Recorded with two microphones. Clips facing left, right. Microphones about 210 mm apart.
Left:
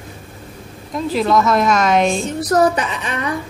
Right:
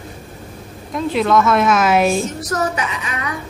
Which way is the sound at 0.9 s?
Centre (ahead or behind).